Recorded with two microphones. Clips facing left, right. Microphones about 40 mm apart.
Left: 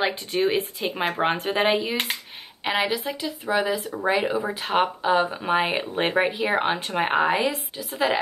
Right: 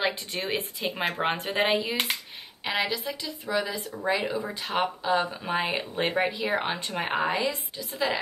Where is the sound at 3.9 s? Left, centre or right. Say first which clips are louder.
Left 2 dB; left.